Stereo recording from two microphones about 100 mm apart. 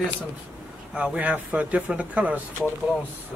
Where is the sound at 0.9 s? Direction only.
10° right (ahead or behind).